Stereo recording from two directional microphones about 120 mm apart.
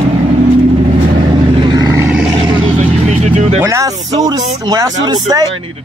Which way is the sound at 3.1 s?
70° right (ahead or behind).